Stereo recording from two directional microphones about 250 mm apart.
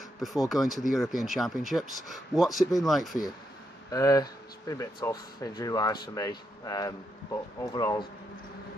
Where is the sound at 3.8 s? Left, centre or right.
Centre.